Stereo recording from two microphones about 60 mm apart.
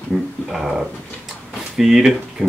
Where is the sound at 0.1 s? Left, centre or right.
Centre.